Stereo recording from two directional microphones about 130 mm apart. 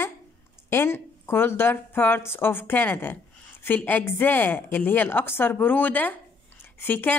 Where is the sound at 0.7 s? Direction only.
20° left (ahead or behind).